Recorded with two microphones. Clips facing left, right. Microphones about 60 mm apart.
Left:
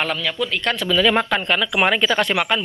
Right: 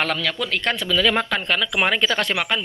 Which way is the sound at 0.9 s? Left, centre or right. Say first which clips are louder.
Left 3 dB; left.